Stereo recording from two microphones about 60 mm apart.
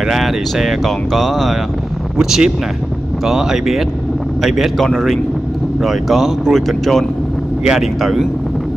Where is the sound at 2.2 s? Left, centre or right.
Centre.